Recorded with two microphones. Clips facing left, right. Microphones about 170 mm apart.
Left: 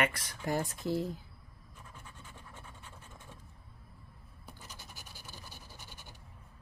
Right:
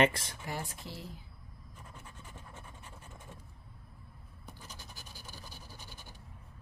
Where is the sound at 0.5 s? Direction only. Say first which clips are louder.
Left 9 dB; 45° left (ahead or behind).